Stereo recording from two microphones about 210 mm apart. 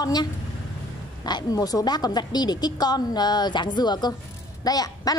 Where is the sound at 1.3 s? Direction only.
20° left (ahead or behind).